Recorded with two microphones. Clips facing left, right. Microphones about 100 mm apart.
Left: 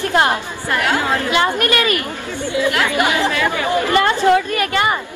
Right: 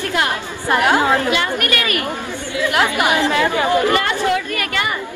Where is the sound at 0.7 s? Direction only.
20° right (ahead or behind).